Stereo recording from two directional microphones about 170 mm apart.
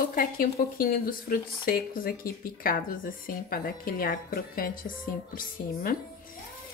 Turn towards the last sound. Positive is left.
turn(degrees=55)  # may be behind; listen again after turning